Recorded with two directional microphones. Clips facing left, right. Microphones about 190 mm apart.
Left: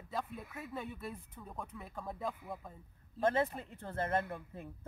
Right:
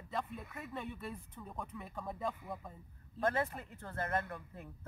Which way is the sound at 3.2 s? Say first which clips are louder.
Left 3 dB; 25° left (ahead or behind).